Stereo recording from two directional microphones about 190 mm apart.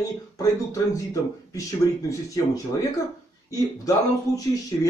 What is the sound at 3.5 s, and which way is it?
Speech, 20° left (ahead or behind).